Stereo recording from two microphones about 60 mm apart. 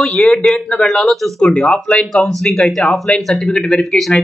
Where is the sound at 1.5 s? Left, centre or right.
Centre.